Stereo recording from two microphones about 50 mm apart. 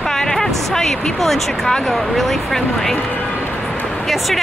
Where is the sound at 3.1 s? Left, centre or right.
Left.